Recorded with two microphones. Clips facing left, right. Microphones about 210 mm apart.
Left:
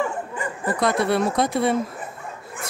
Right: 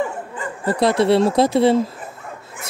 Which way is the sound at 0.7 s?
30° right (ahead or behind).